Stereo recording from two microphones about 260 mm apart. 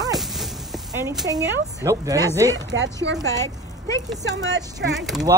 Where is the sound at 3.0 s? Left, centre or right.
Right.